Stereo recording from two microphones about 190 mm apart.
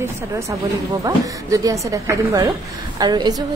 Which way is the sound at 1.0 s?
20° right (ahead or behind).